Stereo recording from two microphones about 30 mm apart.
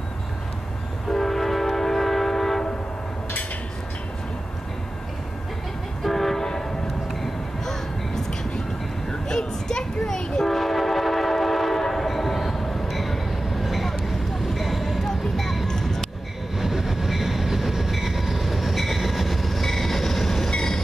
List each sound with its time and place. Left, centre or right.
1.1 s train: centre
6.0 s train: centre
7.6 s vehicle: centre
9.3 s children playing: left
10.4 s train: centre
14.0 s vehicle: centre
15.0 s music: centre
16.5 s train: centre